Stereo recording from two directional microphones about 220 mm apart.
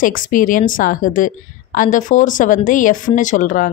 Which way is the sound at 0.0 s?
40° left (ahead or behind).